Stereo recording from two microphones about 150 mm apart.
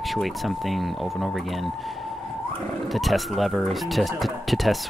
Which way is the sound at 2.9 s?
Centre (ahead or behind).